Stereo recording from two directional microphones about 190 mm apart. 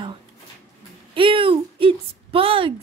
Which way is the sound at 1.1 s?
25° right (ahead or behind).